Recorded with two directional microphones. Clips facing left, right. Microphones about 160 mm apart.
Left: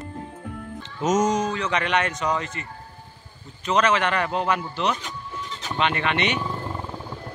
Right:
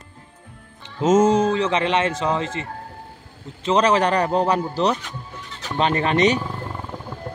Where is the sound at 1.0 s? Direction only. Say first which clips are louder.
Right 6 dB; 25° right (ahead or behind).